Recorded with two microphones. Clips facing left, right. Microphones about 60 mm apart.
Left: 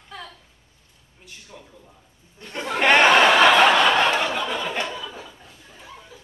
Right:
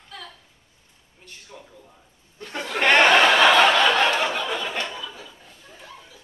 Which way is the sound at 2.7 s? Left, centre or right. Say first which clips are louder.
Left 1 dB; centre.